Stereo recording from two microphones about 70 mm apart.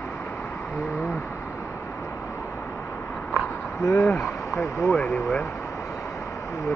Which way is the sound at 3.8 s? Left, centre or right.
Left.